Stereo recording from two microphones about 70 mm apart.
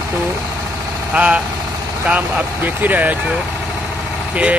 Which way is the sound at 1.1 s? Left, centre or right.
Centre.